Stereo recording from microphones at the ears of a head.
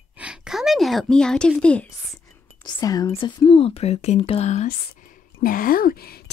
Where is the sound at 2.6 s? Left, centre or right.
Left.